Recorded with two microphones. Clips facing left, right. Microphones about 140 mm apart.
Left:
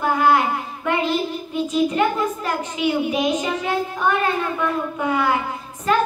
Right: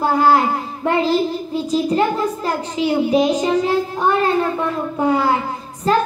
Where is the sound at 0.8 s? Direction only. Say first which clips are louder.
Right 5 dB; 35° right (ahead or behind).